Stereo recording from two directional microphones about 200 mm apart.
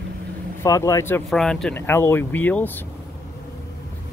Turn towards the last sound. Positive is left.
turn(degrees=10)  # may be behind; listen again after turning